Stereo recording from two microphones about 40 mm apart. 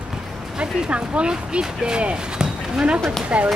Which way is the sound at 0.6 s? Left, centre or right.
Right.